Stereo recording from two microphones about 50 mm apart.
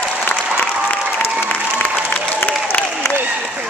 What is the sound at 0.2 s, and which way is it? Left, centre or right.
Applause, left.